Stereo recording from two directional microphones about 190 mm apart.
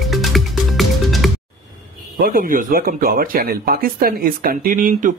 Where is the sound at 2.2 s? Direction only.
50° right (ahead or behind).